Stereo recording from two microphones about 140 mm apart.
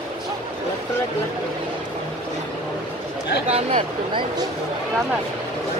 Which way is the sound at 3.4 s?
50° right (ahead or behind).